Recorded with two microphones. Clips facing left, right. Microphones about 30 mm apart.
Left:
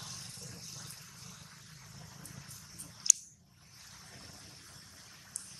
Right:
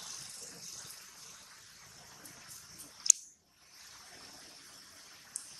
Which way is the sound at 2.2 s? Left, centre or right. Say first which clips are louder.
Left 2 dB; centre.